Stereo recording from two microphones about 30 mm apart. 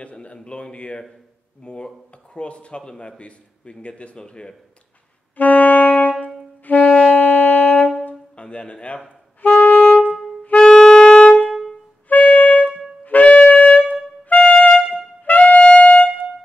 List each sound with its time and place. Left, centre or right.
0.0 s a sound: left
0.4 s a man's voice: left
2.8 s a man's voice: left
5.4 s music: left
6.2 s saxophone: left
8.1 s music: left
9.4 s music: left
9.8 s brass instrument: left
10.6 s music: left
11.2 s music: left
12.1 s music: left
13.5 s wind instrument: left
14.3 s trumpet: left
15.2 s music: left